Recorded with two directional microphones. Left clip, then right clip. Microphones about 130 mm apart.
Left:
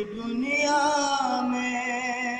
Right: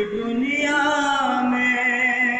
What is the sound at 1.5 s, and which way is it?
Music, 45° left (ahead or behind).